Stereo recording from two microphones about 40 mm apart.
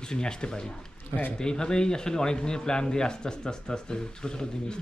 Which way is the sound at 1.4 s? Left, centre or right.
Centre.